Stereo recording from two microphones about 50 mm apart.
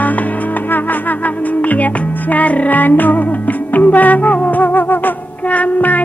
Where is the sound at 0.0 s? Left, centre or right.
Left.